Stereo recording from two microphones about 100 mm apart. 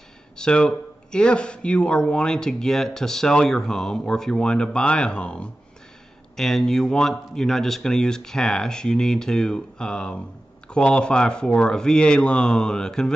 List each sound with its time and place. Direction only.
0.4 s speech: 10° left (ahead or behind)